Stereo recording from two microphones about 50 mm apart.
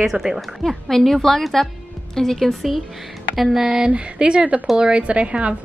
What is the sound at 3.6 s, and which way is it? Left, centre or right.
A woman's voice, centre.